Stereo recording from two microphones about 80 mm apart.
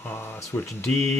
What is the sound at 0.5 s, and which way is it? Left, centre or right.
Speech, left.